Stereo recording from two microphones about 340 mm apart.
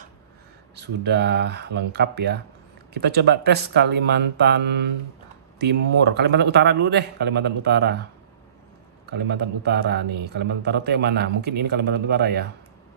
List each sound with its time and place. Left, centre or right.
0.7 s a man's voice: right
9.3 s a man's voice: right